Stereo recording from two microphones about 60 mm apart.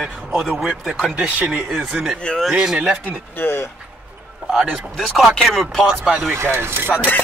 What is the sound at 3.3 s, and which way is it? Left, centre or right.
Speech, left.